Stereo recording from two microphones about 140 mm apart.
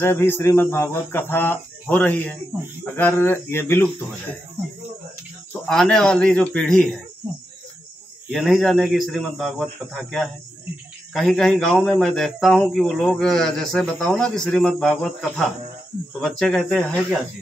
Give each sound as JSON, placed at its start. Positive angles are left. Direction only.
{"t": 0.0, "sound": "speech", "side_deg": 15}
{"t": 5.5, "sound": "a man's voice", "side_deg": 5}
{"t": 7.2, "sound": "cricket", "side_deg": -10}
{"t": 8.3, "sound": "a man's voice", "side_deg": 0}